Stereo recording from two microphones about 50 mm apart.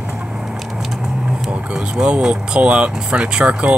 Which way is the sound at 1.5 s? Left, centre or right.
Centre.